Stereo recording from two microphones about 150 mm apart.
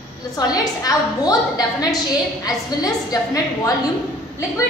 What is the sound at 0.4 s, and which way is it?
Speech, 25° left (ahead or behind).